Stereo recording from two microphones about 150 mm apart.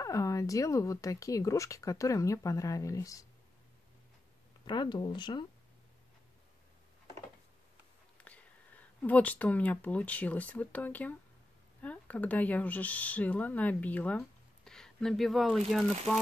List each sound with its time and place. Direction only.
0.0 s speech: 20° left (ahead or behind)
4.6 s speech: 30° left (ahead or behind)
8.2 s speech: 10° left (ahead or behind)